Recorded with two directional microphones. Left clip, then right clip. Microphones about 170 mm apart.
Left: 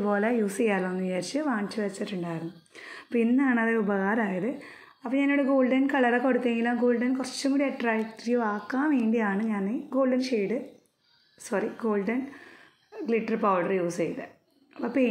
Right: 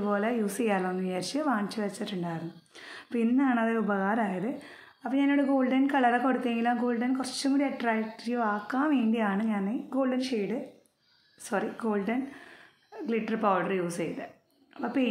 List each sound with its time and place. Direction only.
0.0 s a woman's voice: 20° left (ahead or behind)
0.5 s speech: 10° left (ahead or behind)